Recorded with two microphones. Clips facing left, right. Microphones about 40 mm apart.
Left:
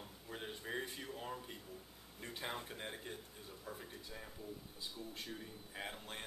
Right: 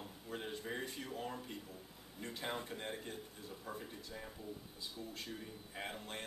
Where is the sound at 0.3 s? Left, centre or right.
Centre.